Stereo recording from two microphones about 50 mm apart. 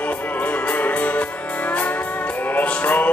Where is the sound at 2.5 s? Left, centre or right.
Left.